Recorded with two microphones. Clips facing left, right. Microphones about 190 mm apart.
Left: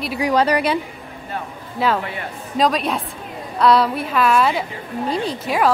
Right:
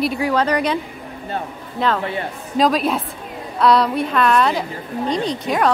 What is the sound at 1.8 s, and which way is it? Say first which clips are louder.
A woman's voice: right 1 dB; 5° left (ahead or behind).